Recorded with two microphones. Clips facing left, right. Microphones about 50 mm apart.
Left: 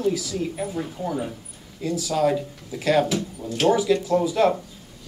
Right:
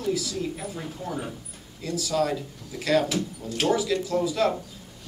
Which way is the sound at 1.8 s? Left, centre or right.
Left.